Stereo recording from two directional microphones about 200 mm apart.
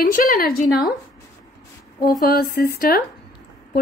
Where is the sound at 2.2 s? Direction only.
50° left (ahead or behind).